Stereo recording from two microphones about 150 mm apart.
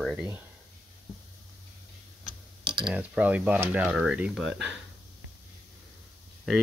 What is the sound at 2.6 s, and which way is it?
Mechanisms, 30° right (ahead or behind).